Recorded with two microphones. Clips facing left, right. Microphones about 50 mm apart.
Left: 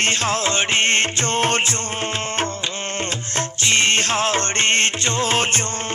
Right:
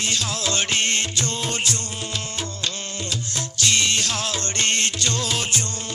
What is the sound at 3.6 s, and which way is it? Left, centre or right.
Music, left.